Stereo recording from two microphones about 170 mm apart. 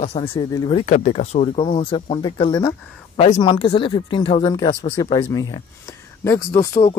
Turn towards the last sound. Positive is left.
turn(degrees=20)  # may be behind; listen again after turning